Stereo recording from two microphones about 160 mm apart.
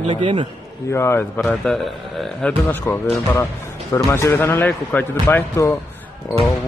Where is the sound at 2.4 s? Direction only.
15° left (ahead or behind).